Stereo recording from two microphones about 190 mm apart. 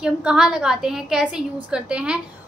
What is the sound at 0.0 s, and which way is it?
A woman's voice, 5° right (ahead or behind).